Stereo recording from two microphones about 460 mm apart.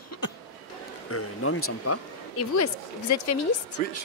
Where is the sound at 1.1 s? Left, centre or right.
Left.